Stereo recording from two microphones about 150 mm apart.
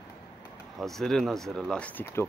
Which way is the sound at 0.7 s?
Centre (ahead or behind).